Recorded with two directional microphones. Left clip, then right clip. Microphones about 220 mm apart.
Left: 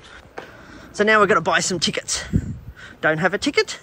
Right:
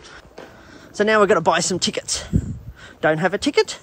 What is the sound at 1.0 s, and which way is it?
Speech, 15° right (ahead or behind).